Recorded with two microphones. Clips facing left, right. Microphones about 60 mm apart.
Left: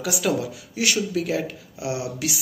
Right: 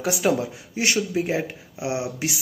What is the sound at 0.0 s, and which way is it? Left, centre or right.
Speech, right.